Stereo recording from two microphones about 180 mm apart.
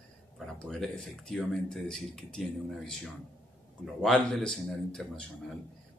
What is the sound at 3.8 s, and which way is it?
Speech, centre (ahead or behind).